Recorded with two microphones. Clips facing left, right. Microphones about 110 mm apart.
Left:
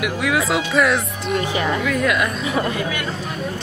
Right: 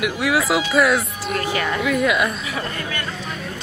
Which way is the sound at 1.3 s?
20° left (ahead or behind).